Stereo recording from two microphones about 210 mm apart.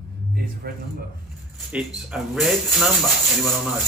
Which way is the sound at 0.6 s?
50° right (ahead or behind).